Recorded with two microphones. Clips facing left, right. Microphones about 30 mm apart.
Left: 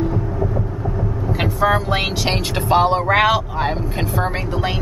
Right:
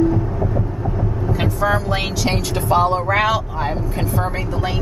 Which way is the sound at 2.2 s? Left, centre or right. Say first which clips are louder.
Even; left.